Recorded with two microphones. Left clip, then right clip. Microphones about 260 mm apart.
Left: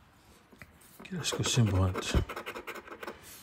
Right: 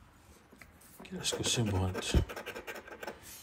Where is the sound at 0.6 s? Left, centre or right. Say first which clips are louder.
Left 3 dB; left.